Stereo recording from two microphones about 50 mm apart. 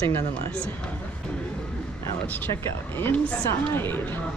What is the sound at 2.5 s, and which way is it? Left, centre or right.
Speech, left.